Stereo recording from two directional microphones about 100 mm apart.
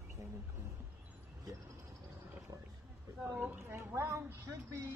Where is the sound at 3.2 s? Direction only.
20° right (ahead or behind).